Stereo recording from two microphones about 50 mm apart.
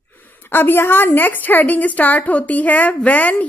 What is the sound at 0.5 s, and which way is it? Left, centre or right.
A woman's voice, left.